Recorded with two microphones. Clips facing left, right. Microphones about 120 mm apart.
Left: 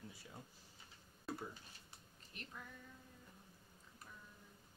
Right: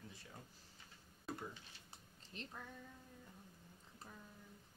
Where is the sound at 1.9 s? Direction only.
30° right (ahead or behind).